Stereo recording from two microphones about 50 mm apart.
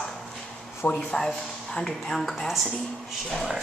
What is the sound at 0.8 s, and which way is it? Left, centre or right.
Speech, left.